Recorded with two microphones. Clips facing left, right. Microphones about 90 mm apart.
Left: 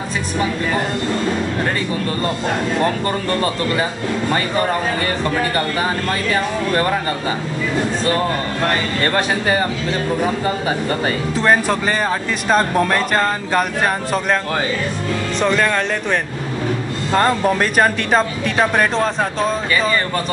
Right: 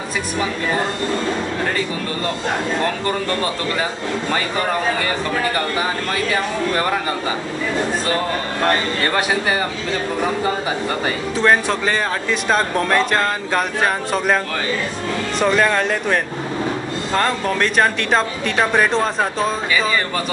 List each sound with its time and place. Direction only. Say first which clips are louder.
9.0 s speech: left 3 dB; 10° right (ahead or behind)
11.3 s speech: even; 5° left (ahead or behind)
15.4 s speech: right 1 dB; 5° right (ahead or behind)
17.1 s speech: left 4 dB; 10° left (ahead or behind)